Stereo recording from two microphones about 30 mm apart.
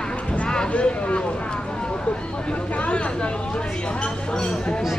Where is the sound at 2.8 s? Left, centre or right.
Left.